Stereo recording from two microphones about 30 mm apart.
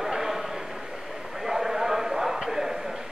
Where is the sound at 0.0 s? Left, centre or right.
Centre.